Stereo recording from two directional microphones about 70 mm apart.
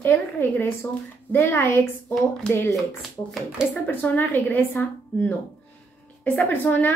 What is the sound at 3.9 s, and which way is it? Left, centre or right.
Speech, left.